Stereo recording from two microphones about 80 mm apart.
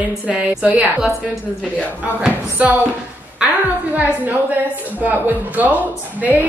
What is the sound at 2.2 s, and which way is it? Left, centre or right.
Speech, centre.